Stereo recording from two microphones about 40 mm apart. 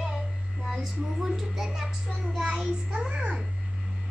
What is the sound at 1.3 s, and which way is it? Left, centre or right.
A child's voice, centre.